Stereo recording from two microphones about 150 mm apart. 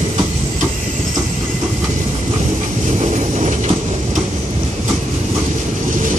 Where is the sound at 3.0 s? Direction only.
50° right (ahead or behind).